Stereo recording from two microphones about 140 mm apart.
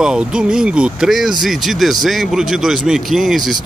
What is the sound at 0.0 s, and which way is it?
Speech, 5° right (ahead or behind).